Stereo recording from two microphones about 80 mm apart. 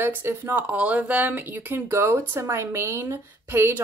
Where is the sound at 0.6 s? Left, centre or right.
Centre.